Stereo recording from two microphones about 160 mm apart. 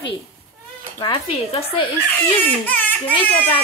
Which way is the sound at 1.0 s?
35° left (ahead or behind).